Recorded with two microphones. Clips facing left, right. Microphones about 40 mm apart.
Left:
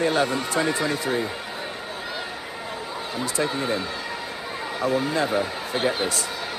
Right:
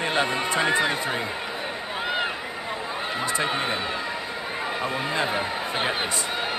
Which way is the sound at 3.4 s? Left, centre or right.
Right.